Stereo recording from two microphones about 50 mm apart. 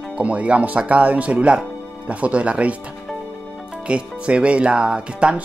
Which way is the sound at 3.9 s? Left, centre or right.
Right.